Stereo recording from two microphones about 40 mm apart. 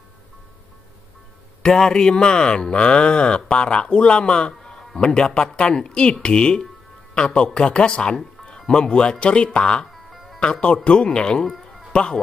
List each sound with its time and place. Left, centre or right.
1.6 s speech: centre